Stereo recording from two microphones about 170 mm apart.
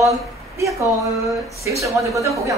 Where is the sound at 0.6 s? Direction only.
20° right (ahead or behind).